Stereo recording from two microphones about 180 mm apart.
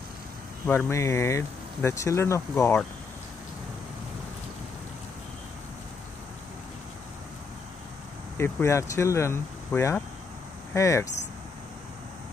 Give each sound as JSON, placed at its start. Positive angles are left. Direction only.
{"t": 0.7, "sound": "speech", "side_deg": 15}
{"t": 8.4, "sound": "speech", "side_deg": 15}